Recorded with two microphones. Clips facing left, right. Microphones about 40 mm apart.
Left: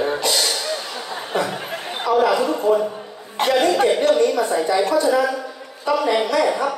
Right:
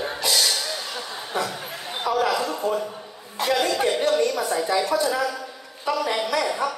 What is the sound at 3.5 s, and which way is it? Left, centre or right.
Speech, left.